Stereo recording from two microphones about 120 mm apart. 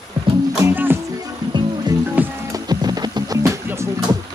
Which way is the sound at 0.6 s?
15° right (ahead or behind).